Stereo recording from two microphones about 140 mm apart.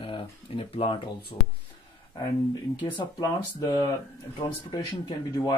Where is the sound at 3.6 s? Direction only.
30° left (ahead or behind).